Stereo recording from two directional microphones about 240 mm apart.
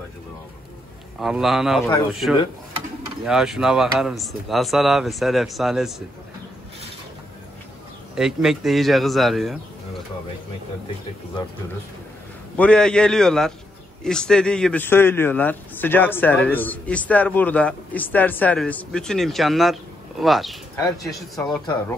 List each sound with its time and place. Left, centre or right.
1.2 s speech: centre
3.3 s speech: centre
8.2 s speech: centre
12.5 s a man's voice: centre
20.7 s a man's voice: centre